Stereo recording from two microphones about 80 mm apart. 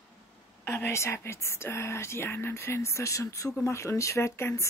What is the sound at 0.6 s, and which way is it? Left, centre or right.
Speech, left.